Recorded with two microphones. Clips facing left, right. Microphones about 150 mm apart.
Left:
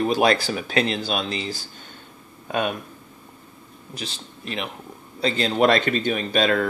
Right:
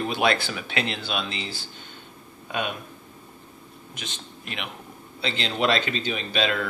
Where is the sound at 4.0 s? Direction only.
35° left (ahead or behind).